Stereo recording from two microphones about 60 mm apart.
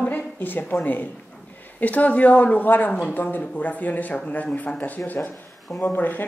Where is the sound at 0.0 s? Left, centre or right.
Left.